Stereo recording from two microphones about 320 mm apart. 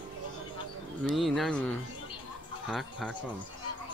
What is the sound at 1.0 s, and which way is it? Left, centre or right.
Speech, centre.